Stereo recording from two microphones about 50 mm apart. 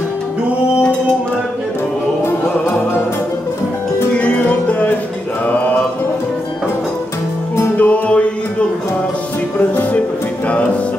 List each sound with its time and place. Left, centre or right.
4.1 s music: left
7.7 s music: left